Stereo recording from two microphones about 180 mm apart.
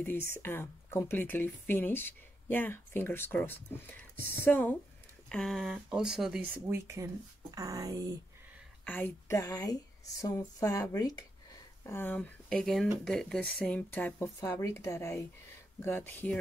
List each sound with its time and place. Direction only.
0.3 s speech: 15° left (ahead or behind); by 6.4 s 5° right (ahead or behind)
6.7 s speech: 15° right (ahead or behind)
8.8 s speech: 10° left (ahead or behind)